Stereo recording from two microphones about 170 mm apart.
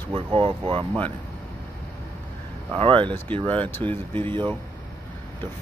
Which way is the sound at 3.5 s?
10° left (ahead or behind).